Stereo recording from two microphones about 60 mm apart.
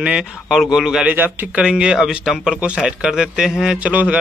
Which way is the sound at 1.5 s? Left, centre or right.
Centre.